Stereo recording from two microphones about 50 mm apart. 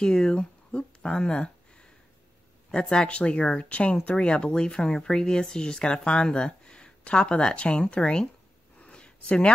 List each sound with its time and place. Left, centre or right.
0.0 s speech: centre
2.9 s speech: centre
8.7 s a sound: centre